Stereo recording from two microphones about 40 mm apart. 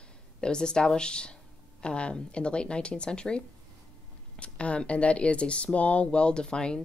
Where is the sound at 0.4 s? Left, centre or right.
Left.